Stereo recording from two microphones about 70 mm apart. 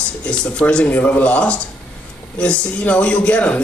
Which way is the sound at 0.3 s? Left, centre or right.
Centre.